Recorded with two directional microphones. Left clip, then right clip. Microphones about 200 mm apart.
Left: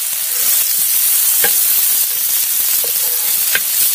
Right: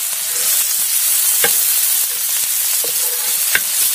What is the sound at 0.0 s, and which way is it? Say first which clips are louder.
Frying: even; centre (ahead or behind).